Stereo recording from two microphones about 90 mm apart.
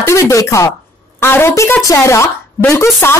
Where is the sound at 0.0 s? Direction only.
35° left (ahead or behind).